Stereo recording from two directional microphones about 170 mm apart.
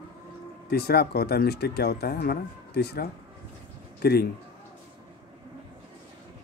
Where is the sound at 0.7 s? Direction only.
65° left (ahead or behind).